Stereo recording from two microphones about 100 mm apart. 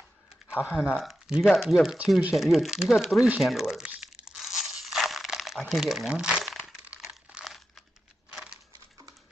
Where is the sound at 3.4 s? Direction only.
5° right (ahead or behind).